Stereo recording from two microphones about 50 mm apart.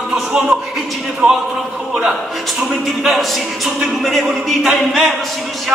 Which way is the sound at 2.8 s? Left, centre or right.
Centre.